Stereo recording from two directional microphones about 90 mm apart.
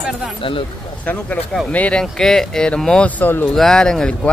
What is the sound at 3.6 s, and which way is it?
Speech, 5° left (ahead or behind).